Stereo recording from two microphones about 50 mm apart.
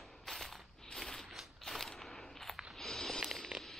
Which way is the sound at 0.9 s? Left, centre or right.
Centre.